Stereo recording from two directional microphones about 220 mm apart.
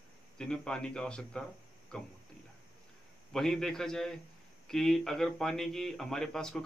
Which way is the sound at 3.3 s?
Centre (ahead or behind).